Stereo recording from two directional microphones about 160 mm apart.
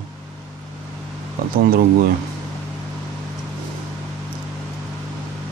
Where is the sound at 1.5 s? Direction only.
65° right (ahead or behind).